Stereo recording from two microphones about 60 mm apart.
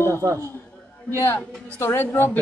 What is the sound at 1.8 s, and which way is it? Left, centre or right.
Speech, left.